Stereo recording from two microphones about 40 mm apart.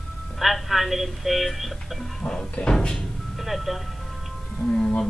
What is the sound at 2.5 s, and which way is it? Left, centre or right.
Speech, left.